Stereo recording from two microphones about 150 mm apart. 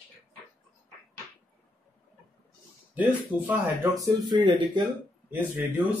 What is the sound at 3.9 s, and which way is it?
Speech, 25° right (ahead or behind).